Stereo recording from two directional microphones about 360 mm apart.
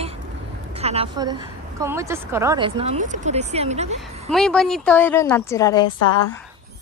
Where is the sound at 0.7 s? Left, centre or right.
Centre.